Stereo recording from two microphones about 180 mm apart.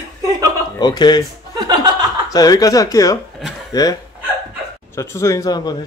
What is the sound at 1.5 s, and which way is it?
Speech, 25° right (ahead or behind).